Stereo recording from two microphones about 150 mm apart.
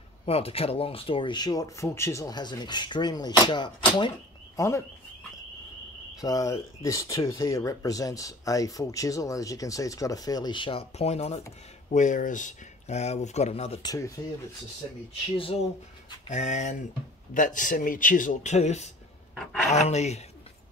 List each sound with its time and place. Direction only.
0.2 s speech: 40° left (ahead or behind)
4.6 s speech: 20° left (ahead or behind)
6.2 s speech: 25° left (ahead or behind); by 13.7 s 45° left (ahead or behind)
13.8 s speech: 20° left (ahead or behind)
15.3 s speech: 35° left (ahead or behind)
16.3 s speech: 50° left (ahead or behind)
19.3 s speech: centre (ahead or behind)
19.7 s speech: 50° left (ahead or behind)